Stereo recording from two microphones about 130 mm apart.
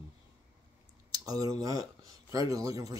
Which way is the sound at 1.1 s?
30° right (ahead or behind).